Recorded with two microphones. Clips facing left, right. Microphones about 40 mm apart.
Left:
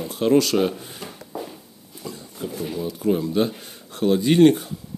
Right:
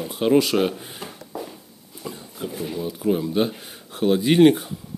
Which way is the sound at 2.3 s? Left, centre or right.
Centre.